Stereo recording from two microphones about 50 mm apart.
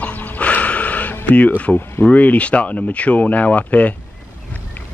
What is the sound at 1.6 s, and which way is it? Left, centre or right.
Speech, left.